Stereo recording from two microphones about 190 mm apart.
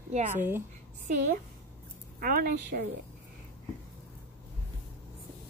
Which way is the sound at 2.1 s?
50° right (ahead or behind).